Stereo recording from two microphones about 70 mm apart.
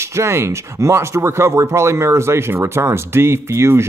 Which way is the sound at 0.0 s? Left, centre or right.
Right.